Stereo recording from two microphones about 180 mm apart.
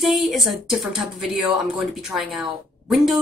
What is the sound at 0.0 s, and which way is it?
A woman's voice, centre (ahead or behind).